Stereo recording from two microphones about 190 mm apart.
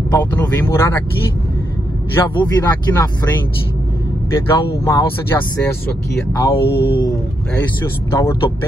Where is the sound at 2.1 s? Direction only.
10° left (ahead or behind).